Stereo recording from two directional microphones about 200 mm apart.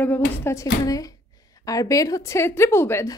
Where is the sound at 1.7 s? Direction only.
15° left (ahead or behind).